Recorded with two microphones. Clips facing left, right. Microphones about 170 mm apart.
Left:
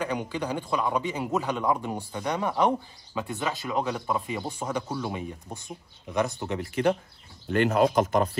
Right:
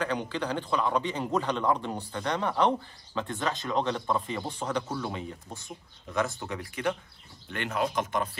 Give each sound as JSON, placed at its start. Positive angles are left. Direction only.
{"t": 0.0, "sound": "a man's voice", "side_deg": 10}
{"t": 7.4, "sound": "speech", "side_deg": 40}